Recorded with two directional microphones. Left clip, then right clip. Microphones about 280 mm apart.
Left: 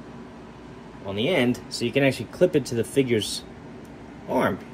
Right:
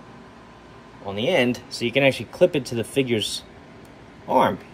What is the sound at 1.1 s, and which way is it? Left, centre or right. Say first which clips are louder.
Speech: right 2 dB; centre.